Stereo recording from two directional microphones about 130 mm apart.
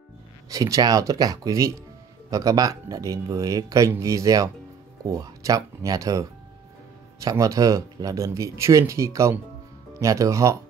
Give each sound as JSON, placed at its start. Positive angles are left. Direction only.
{"t": 0.5, "sound": "speech", "side_deg": -25}